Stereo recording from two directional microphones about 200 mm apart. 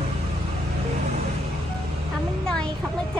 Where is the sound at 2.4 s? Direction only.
5° left (ahead or behind).